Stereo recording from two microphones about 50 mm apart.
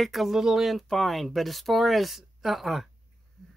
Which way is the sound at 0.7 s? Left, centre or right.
Centre.